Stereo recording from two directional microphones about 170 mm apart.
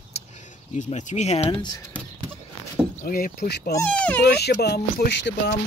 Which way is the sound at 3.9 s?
5° left (ahead or behind).